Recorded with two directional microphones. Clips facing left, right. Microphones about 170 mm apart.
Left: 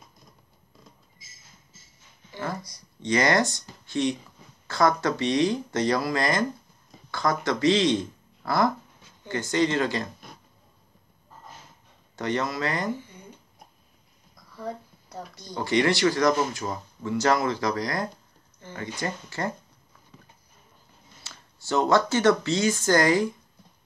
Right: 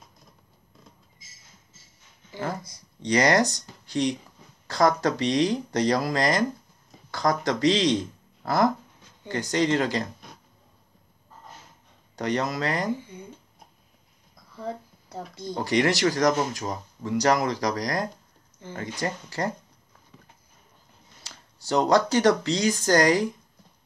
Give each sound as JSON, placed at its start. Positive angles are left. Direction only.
{"t": 3.0, "sound": "speech", "side_deg": -35}
{"t": 4.6, "sound": "speech", "side_deg": -40}
{"t": 12.2, "sound": "speech", "side_deg": -40}
{"t": 15.0, "sound": "speech", "side_deg": -20}
{"t": 15.5, "sound": "speech", "side_deg": -40}
{"t": 21.5, "sound": "speech", "side_deg": -35}